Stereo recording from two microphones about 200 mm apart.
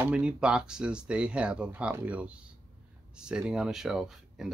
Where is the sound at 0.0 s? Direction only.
5° right (ahead or behind).